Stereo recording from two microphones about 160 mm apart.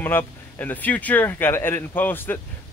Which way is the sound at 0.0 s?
15° left (ahead or behind).